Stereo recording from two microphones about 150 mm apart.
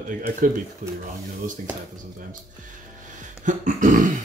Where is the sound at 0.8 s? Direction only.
55° right (ahead or behind).